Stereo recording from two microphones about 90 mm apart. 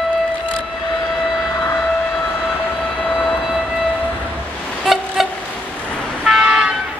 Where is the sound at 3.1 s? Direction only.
Centre (ahead or behind).